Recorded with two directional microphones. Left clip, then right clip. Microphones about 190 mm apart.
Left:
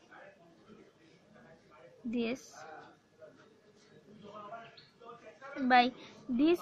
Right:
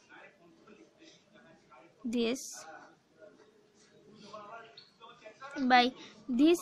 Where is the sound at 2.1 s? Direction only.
35° right (ahead or behind).